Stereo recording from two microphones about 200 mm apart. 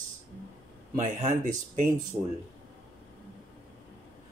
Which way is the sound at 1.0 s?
35° right (ahead or behind).